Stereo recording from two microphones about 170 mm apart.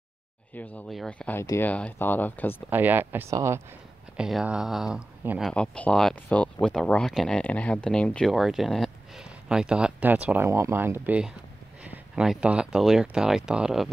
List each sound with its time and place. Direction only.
0.6 s speech: 5° left (ahead or behind)
1.3 s speech: 15° left (ahead or behind)
2.7 s speech: 10° right (ahead or behind)
4.2 s speech: 5° right (ahead or behind)
5.4 s speech: 5° left (ahead or behind)